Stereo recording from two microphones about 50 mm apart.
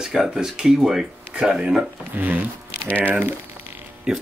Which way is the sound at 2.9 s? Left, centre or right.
Left.